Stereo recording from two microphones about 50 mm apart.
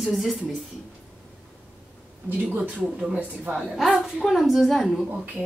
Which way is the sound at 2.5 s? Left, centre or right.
Right.